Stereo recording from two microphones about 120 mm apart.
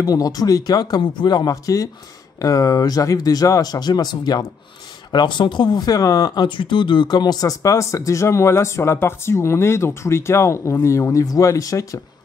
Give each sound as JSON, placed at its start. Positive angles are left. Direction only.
{"t": 0.0, "sound": "speech", "side_deg": 30}